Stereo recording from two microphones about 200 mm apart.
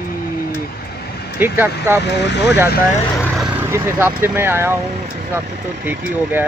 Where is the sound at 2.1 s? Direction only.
60° left (ahead or behind).